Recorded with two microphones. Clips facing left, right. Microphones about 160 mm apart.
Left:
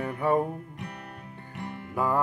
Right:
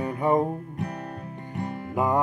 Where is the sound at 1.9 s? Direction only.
20° right (ahead or behind).